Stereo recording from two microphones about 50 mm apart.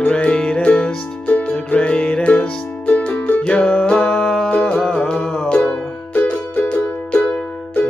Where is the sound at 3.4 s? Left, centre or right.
Left.